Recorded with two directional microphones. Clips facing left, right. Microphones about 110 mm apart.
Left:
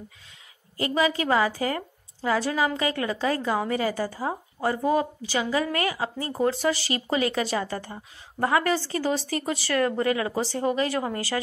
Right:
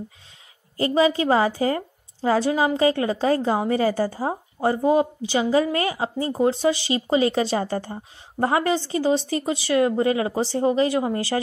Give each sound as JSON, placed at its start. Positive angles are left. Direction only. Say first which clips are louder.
{"t": 0.7, "sound": "a woman's voice", "louder": "right 5 dB", "side_deg": -30}